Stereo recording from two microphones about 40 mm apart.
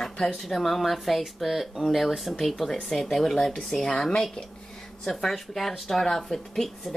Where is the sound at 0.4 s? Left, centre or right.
Centre.